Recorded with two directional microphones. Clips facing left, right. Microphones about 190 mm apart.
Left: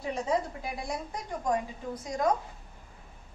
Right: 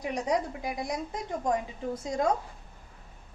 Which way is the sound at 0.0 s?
15° right (ahead or behind).